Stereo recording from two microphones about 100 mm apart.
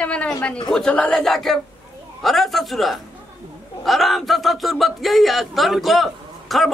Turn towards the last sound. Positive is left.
turn(degrees=0)  # may be behind; listen again after turning